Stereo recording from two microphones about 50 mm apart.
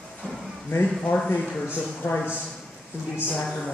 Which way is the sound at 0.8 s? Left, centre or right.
Left.